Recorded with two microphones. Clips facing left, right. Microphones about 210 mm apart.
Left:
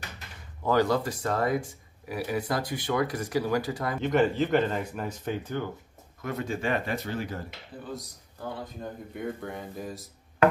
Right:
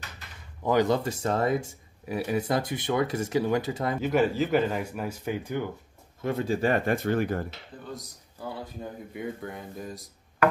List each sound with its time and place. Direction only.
0.7 s speech: 20° right (ahead or behind)
4.0 s speech: 5° right (ahead or behind)
6.2 s speech: 30° right (ahead or behind); by 7.4 s 55° right (ahead or behind)
8.8 s speech: 5° right (ahead or behind)